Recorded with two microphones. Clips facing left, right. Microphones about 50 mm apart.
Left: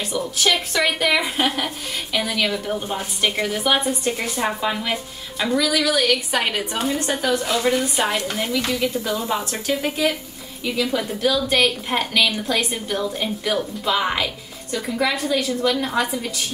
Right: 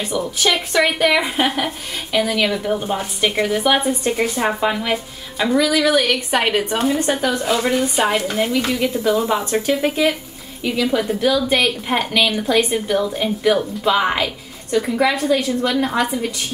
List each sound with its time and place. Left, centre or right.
0.0 s a woman's voice: centre
6.8 s a woman's voice: centre